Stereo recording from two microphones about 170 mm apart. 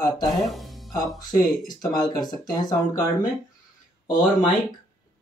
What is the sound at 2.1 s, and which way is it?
Speech, 25° left (ahead or behind).